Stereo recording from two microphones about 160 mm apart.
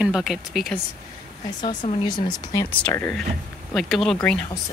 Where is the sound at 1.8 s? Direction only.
30° left (ahead or behind).